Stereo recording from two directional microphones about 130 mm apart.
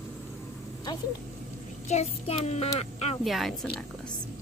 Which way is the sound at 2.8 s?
55° left (ahead or behind).